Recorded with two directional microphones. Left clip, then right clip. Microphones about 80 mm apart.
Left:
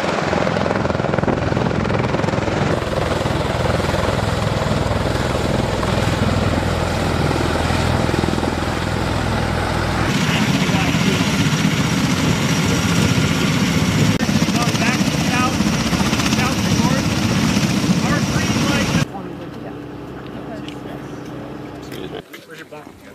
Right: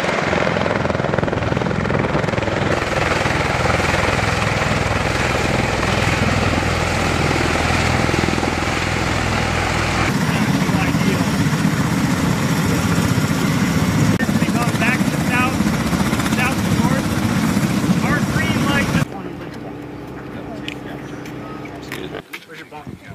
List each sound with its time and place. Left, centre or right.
0.0 s helicopter: centre
2.8 s vehicle: right
10.1 s vehicle: left